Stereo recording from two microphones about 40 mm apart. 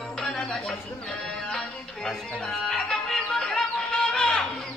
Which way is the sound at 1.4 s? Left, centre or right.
Centre.